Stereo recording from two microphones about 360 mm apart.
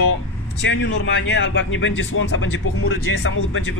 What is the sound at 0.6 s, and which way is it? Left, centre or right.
A man's voice, left.